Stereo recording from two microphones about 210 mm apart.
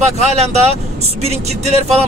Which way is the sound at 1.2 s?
30° right (ahead or behind).